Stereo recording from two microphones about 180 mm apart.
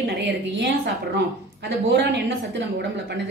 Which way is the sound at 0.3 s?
75° right (ahead or behind).